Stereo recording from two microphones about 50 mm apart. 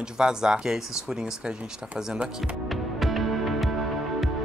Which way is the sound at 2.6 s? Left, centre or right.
Centre.